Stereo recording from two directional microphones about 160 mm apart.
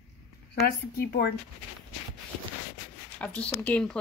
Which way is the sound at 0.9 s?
70° left (ahead or behind).